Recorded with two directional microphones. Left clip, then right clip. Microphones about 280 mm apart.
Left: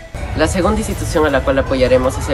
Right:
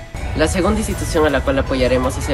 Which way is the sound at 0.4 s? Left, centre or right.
Centre.